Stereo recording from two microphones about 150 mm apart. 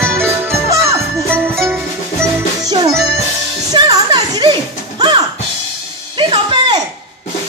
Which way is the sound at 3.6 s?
25° right (ahead or behind).